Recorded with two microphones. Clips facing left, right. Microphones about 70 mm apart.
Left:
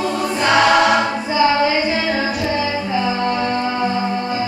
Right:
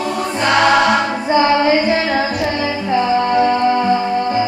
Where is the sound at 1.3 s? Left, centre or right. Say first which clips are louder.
Right 3 dB; right.